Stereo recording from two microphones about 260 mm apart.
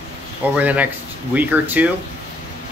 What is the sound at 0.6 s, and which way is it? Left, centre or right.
Speech, centre.